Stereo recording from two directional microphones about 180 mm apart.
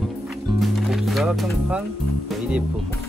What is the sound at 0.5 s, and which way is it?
Music, centre (ahead or behind).